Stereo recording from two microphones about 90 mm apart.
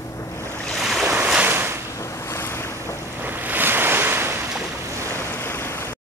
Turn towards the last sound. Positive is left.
turn(degrees=30)  # may be behind; listen again after turning